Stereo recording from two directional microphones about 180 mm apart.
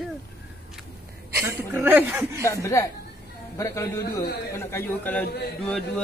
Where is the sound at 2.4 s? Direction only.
15° left (ahead or behind).